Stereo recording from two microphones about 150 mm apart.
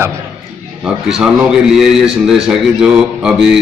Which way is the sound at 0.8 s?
5° right (ahead or behind).